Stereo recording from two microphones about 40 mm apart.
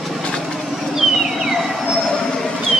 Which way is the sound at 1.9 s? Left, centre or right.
Centre.